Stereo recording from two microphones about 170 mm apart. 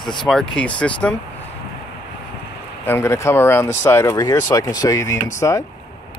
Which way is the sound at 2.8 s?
15° left (ahead or behind).